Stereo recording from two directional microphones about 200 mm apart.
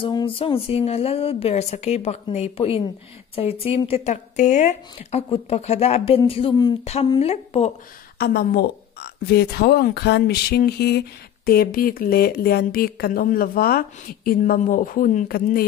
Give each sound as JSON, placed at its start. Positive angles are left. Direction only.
{"t": 0.0, "sound": "speech", "side_deg": 25}
{"t": 8.2, "sound": "speech", "side_deg": 50}